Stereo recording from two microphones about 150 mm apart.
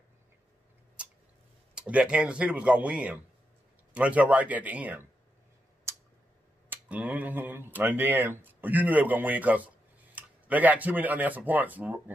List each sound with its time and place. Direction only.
1.8 s speech: 5° right (ahead or behind)
6.7 s speech: 10° right (ahead or behind)